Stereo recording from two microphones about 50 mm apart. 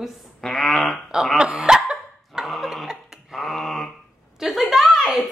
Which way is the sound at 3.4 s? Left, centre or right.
Centre.